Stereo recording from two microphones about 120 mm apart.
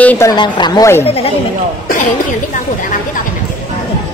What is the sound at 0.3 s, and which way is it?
Speech, 40° left (ahead or behind).